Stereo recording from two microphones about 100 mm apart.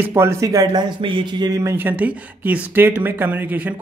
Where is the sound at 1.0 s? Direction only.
55° right (ahead or behind); by 1.7 s 35° right (ahead or behind).